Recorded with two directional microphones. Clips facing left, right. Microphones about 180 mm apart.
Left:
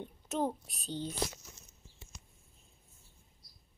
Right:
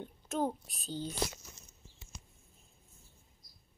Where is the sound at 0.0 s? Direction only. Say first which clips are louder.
Even; centre (ahead or behind).